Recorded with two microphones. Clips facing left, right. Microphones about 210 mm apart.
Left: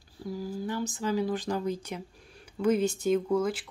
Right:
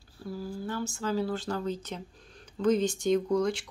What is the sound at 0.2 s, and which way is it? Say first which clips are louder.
Speech: left 2 dB; 15° left (ahead or behind).